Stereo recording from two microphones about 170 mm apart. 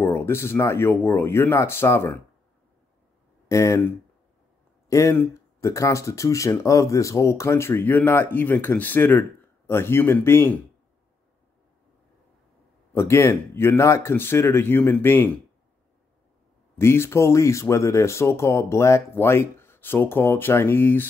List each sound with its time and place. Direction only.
0.0 s speech: 15° left (ahead or behind)
3.4 s speech: 15° left (ahead or behind)
12.9 s speech: 15° left (ahead or behind)
16.7 s speech: 15° left (ahead or behind)